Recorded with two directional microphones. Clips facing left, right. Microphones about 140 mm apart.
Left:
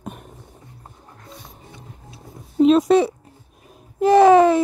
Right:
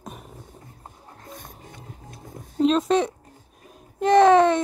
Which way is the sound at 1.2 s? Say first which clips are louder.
Right 1 dB; 50° right (ahead or behind).